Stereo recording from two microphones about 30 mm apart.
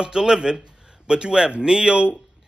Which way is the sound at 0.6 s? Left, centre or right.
Right.